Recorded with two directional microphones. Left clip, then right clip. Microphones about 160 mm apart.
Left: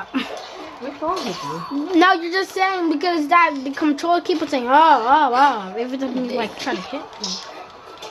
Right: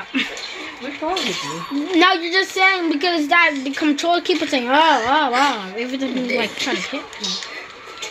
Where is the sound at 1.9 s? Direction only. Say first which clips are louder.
Even; centre (ahead or behind).